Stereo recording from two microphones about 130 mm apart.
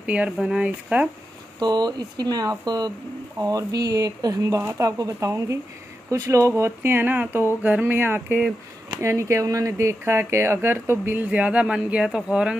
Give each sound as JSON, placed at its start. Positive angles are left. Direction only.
{"t": 0.0, "sound": "speech", "side_deg": -10}
{"t": 1.6, "sound": "speech", "side_deg": -30}